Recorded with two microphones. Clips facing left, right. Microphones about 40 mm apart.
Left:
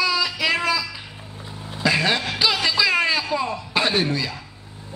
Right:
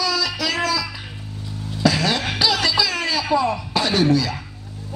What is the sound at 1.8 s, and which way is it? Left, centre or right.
Vehicle, left.